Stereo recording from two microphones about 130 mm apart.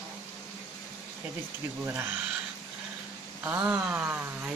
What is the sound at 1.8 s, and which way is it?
Speech, 15° right (ahead or behind).